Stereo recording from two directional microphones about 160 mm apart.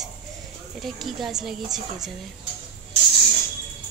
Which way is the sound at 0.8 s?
Centre (ahead or behind).